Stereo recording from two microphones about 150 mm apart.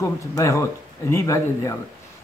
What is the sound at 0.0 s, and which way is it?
Speech, 20° left (ahead or behind).